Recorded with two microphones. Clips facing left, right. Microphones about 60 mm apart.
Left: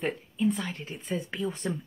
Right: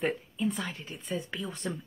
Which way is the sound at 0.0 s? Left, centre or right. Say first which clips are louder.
Left 2 dB; centre.